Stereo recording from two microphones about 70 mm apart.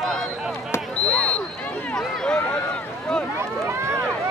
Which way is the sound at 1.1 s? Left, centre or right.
Left.